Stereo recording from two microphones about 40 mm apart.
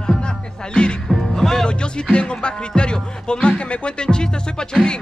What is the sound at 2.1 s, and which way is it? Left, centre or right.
Music, left.